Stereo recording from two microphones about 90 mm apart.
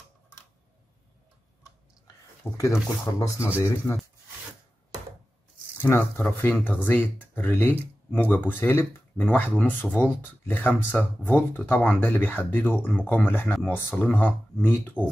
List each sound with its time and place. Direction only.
2.5 s speech: 35° left (ahead or behind)
5.8 s speech: 25° left (ahead or behind)